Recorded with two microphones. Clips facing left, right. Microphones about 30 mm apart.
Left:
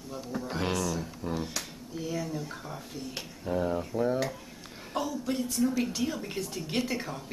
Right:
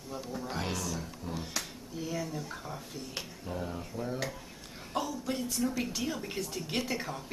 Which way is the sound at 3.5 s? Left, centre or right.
Centre.